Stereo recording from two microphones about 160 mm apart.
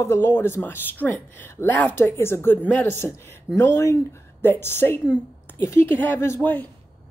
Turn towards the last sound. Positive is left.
turn(degrees=10)  # may be behind; listen again after turning